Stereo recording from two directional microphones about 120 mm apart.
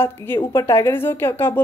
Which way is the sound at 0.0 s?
20° left (ahead or behind).